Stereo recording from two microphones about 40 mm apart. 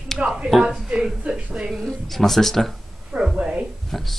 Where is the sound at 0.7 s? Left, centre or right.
Centre.